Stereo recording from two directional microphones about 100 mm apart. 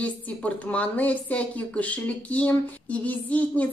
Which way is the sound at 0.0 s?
15° left (ahead or behind).